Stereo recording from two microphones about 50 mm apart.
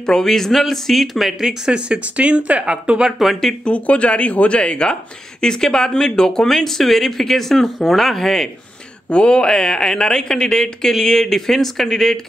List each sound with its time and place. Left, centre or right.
0.0 s speech: centre
1.7 s speech: right
3.2 s speech: centre
3.6 s speech: left; by 8.5 s centre
9.1 s speech: centre